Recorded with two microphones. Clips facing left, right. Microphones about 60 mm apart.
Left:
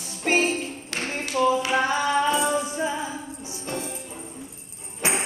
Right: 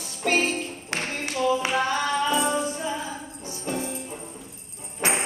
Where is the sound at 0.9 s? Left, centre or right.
Right.